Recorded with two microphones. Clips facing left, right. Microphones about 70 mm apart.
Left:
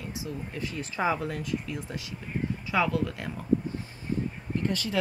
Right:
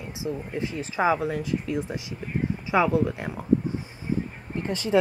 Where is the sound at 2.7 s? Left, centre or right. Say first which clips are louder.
Right 5 dB; right.